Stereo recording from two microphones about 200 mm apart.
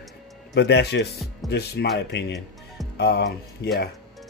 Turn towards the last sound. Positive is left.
turn(degrees=55)  # may be behind; listen again after turning